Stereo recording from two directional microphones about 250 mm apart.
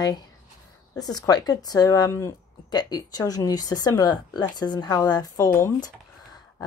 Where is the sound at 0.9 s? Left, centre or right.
Centre.